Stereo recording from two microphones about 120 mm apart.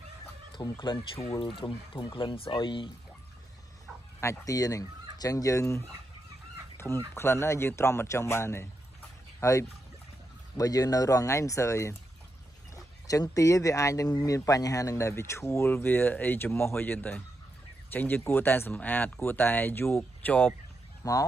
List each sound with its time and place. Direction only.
0.6 s speech: 40° left (ahead or behind)
4.2 s speech: 25° left (ahead or behind)
6.8 s speech: 25° left (ahead or behind)
21.0 s speech: 30° left (ahead or behind)